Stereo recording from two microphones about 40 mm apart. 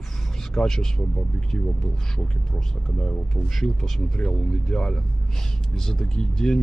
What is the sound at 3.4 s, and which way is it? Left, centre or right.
Speech, centre.